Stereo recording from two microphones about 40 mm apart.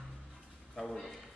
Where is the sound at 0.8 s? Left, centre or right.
Centre.